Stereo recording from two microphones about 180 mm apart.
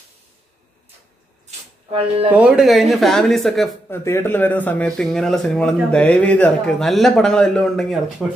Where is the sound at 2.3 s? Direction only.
5° right (ahead or behind).